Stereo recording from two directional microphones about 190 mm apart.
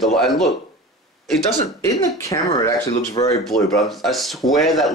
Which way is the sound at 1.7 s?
15° left (ahead or behind).